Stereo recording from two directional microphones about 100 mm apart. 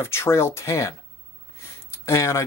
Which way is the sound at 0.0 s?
25° left (ahead or behind).